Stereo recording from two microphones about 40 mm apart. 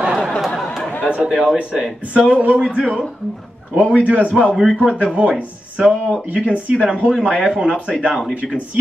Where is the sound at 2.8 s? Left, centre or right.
Centre.